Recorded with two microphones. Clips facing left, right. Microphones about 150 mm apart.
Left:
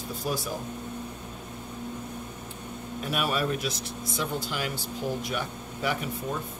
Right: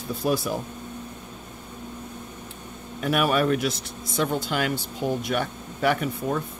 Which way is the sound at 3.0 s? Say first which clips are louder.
Right 7 dB; 65° right (ahead or behind).